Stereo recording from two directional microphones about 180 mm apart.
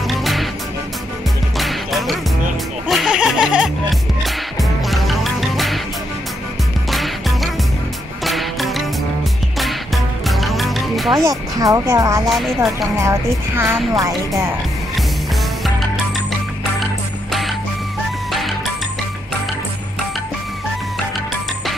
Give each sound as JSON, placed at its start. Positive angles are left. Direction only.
{"t": 0.0, "sound": "music", "side_deg": 0}
{"t": 1.6, "sound": "music", "side_deg": 0}
{"t": 6.9, "sound": "music", "side_deg": 0}
{"t": 11.2, "sound": "speech", "side_deg": -20}
{"t": 12.3, "sound": "speech", "side_deg": 0}
{"t": 13.0, "sound": "a woman's voice", "side_deg": -15}
{"t": 17.3, "sound": "music", "side_deg": 0}